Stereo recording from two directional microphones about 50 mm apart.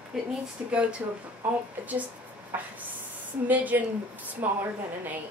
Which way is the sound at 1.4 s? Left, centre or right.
Right.